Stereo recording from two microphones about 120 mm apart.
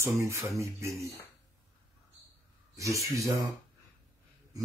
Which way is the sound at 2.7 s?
25° right (ahead or behind).